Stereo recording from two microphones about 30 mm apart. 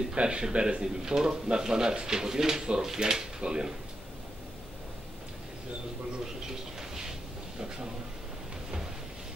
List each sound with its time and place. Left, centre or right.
0.1 s a man's voice: right
0.8 s speech: right
6.2 s a sound: centre